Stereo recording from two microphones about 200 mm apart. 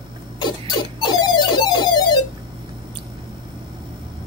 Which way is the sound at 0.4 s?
20° left (ahead or behind).